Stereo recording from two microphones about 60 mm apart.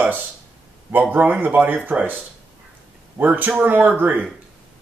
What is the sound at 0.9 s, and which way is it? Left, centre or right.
A man's voice, right.